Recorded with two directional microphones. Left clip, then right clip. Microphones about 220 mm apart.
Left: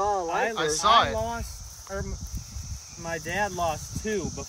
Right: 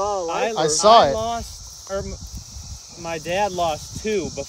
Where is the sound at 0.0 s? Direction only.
5° right (ahead or behind).